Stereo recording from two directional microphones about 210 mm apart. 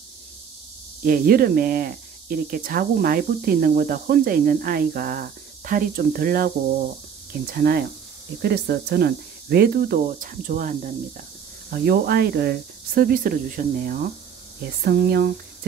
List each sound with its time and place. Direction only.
1.0 s speech: 45° right (ahead or behind)